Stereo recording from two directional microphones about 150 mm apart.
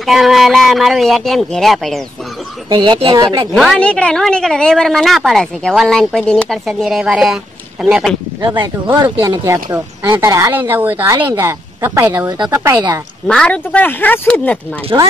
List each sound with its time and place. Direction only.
0.0 s a woman's voice: centre (ahead or behind)
2.7 s speech: 30° right (ahead or behind)
3.5 s a woman's voice: 5° left (ahead or behind); by 12.8 s 20° right (ahead or behind)
13.3 s speech: 5° left (ahead or behind)